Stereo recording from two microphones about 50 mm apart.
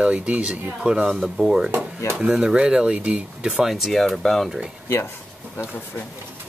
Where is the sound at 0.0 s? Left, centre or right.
Right.